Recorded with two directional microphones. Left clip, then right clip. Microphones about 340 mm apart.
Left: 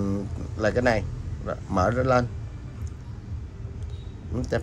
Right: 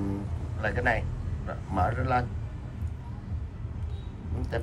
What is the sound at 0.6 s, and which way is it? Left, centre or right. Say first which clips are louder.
A man's voice: left 5 dB; centre.